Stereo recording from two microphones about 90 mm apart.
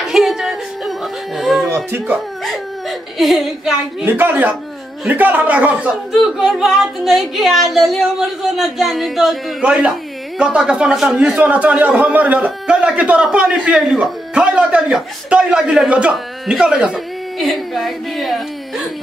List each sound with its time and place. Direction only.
0.0 s music: 5° right (ahead or behind)
2.1 s a sound: centre (ahead or behind)
4.0 s a man's voice: 20° right (ahead or behind)
6.3 s speech: 5° right (ahead or behind)
9.6 s a man's voice: 10° right (ahead or behind)